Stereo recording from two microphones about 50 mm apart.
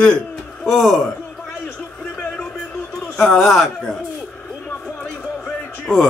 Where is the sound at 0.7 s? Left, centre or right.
Centre.